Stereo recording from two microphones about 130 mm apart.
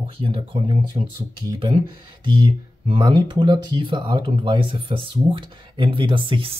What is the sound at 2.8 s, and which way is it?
Speech, 35° right (ahead or behind).